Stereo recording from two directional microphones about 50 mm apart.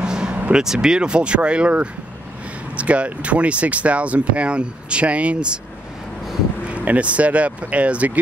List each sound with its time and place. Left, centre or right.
0.0 s vehicle: centre
0.5 s speech: centre
6.7 s speech: right